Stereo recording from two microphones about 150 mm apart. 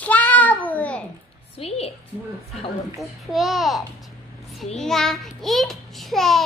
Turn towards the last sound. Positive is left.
turn(degrees=0)  # may be behind; listen again after turning